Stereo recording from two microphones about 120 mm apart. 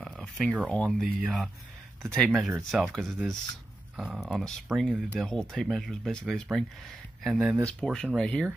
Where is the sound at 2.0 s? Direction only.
5° left (ahead or behind).